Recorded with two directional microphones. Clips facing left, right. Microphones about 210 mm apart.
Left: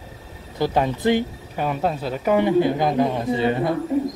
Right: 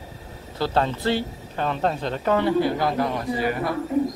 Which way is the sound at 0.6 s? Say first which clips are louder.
Left 2 dB; 15° left (ahead or behind).